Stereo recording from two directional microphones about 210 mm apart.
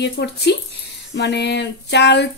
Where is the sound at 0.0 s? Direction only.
55° left (ahead or behind).